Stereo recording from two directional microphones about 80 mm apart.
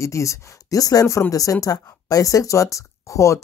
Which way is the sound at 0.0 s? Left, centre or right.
Left.